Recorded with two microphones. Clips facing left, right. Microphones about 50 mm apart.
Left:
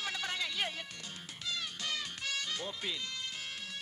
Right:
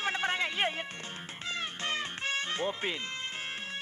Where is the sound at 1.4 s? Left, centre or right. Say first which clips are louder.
Right 4 dB; right.